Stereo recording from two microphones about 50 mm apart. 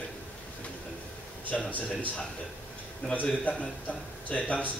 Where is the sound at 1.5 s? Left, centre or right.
Centre.